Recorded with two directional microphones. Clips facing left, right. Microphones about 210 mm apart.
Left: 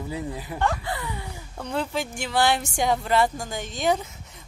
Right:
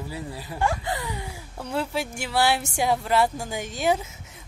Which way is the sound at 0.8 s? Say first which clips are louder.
Right 1 dB; 15° right (ahead or behind).